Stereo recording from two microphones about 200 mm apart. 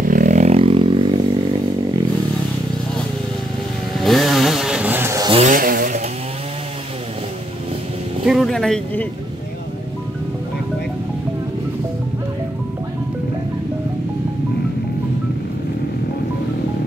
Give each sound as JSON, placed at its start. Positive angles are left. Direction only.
{"t": 0.1, "sound": "vehicle", "side_deg": -40}
{"t": 4.0, "sound": "chainsaw", "side_deg": 0}
{"t": 5.3, "sound": "vehicle", "side_deg": -35}
{"t": 8.3, "sound": "vehicle", "side_deg": 0}